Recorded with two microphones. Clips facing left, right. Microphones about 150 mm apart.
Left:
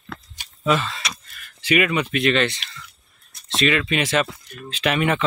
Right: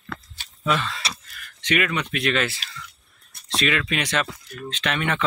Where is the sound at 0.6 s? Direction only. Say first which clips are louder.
Left 3 dB; centre (ahead or behind).